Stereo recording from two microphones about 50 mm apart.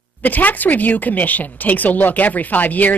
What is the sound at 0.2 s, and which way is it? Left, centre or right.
Speech, left.